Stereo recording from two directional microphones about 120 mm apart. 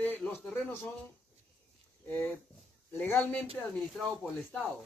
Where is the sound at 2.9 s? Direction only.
20° left (ahead or behind).